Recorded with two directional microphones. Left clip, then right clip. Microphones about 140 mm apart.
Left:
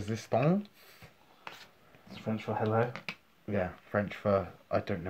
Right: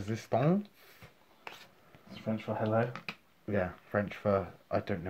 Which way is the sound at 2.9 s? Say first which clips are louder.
Left 1 dB; 30° right (ahead or behind).